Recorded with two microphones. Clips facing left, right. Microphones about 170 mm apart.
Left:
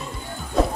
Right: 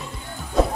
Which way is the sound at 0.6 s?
Centre (ahead or behind).